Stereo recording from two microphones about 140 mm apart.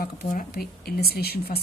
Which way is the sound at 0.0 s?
80° left.